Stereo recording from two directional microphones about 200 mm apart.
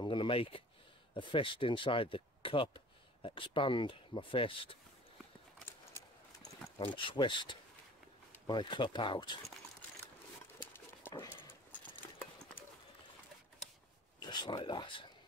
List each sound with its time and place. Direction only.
0.0 s a sound: 25° left (ahead or behind)
1.1 s speech: 25° left (ahead or behind)
6.8 s speech: 25° left (ahead or behind)
10.6 s dog: 10° left (ahead or behind)
14.2 s speech: 20° left (ahead or behind)